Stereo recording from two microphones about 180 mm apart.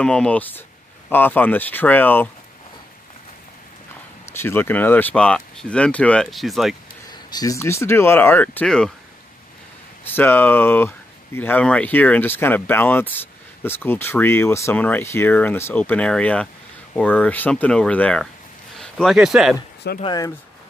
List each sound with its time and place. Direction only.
0.0 s speech: 5° left (ahead or behind)
4.3 s speech: 15° left (ahead or behind)
7.2 s speech: 20° left (ahead or behind); by 8.9 s 5° left (ahead or behind)
10.0 s speech: 10° left (ahead or behind)
20.0 s speech: 25° left (ahead or behind)